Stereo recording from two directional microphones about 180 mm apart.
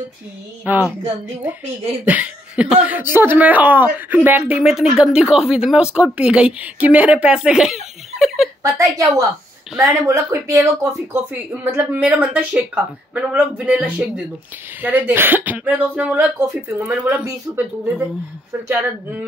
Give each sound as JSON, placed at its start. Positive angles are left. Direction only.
{"t": 0.7, "sound": "speech", "side_deg": -10}
{"t": 2.0, "sound": "speech", "side_deg": -10}
{"t": 8.6, "sound": "speech", "side_deg": -20}